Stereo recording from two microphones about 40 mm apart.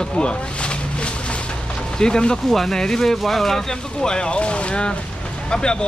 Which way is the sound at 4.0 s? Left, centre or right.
Left.